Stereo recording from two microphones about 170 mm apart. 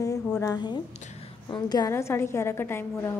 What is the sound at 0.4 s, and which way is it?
A woman's voice, 20° left (ahead or behind).